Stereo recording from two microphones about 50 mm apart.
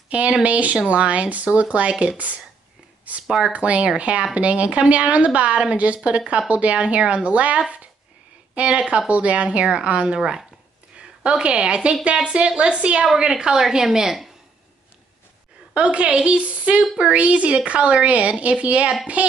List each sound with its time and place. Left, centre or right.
0.1 s speech: right
3.3 s a woman's voice: centre
3.5 s a woman's voice: right; by 14.3 s centre
15.7 s speech: right